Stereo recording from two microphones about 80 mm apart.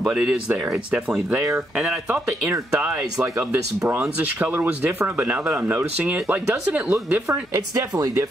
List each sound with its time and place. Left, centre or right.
0.0 s speech: centre
2.7 s speech: centre
4.2 s speech: right
6.3 s speech: centre
6.9 s speech: right